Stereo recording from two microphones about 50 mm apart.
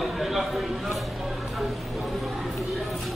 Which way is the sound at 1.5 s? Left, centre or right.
Centre.